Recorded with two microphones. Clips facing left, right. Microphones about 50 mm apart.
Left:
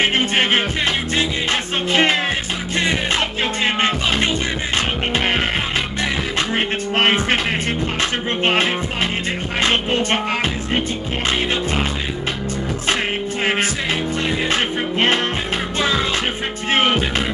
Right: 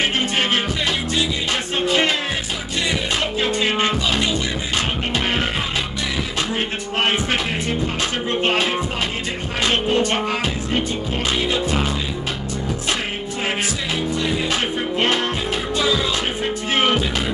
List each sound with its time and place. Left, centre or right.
0.2 s music: left
1.9 s music: left
3.6 s music: left
6.5 s music: left
8.4 s music: left
14.3 s music: left